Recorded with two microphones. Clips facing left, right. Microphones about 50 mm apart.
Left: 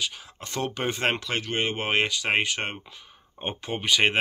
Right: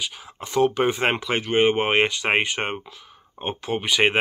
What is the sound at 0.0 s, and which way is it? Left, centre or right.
Speech, centre.